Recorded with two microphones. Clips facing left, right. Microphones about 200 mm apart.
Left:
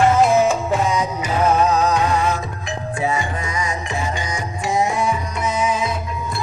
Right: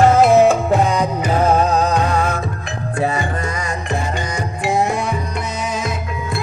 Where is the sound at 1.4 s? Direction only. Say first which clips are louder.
Even; 30° right (ahead or behind).